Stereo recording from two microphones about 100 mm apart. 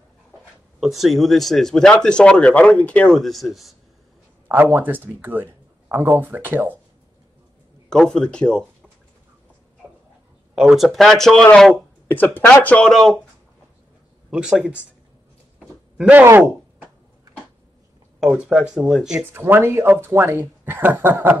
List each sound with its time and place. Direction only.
0.7 s speech: centre (ahead or behind); by 3.1 s 15° left (ahead or behind)
3.1 s speech: centre (ahead or behind)
4.5 s speech: 20° right (ahead or behind)
7.9 s speech: 5° left (ahead or behind)
10.5 s speech: 5° right (ahead or behind)
12.1 s speech: 20° left (ahead or behind)
12.8 s speech: 5° left (ahead or behind)
14.3 s speech: 10° right (ahead or behind)
18.2 s speech: 5° right (ahead or behind)
19.3 s speech: 25° right (ahead or behind)